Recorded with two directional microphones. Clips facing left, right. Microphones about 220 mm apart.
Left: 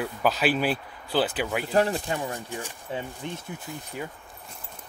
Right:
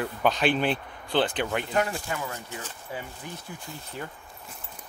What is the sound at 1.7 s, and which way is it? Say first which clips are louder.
Speech: left 6 dB; 30° left (ahead or behind).